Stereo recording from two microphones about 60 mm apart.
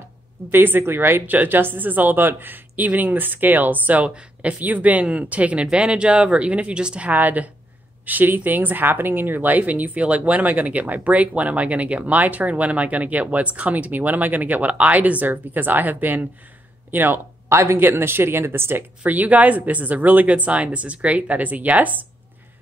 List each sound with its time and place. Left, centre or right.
0.5 s speech: right
1.2 s speech: right
7.1 s speech: right